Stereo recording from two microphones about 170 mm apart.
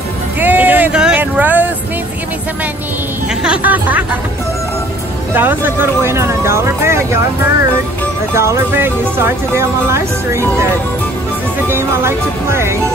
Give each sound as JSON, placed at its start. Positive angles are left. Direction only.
{"t": 0.4, "sound": "a sound", "side_deg": -10}
{"t": 3.4, "sound": "speech", "side_deg": -10}
{"t": 5.3, "sound": "speech", "side_deg": -10}
{"t": 8.4, "sound": "speech", "side_deg": -15}
{"t": 11.6, "sound": "speech", "side_deg": -15}